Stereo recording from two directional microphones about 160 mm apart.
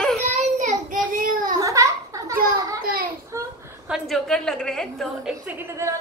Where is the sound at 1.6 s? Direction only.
20° right (ahead or behind).